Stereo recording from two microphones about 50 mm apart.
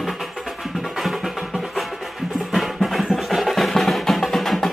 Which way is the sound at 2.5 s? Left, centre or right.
Centre.